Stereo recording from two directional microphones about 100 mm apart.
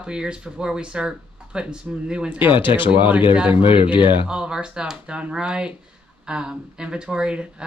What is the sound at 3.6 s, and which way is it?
Speech, 60° left (ahead or behind).